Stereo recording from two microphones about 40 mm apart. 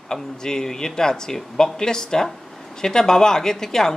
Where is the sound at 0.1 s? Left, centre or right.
Centre.